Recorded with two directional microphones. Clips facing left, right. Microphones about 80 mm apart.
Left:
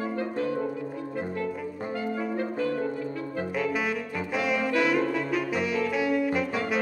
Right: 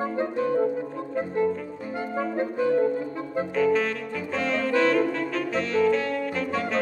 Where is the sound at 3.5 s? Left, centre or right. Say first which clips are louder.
Right 6 dB; centre.